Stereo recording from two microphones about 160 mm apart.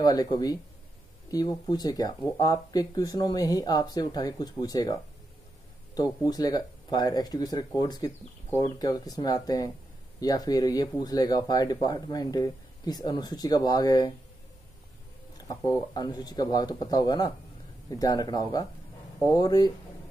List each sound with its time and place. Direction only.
0.0 s speech: 25° left (ahead or behind)
6.2 s speech: 25° left (ahead or behind)
15.4 s speech: 25° left (ahead or behind)